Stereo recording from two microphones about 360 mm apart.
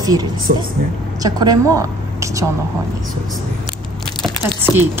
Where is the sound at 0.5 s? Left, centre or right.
Right.